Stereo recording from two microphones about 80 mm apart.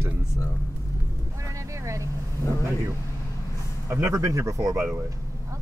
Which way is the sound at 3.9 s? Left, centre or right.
Right.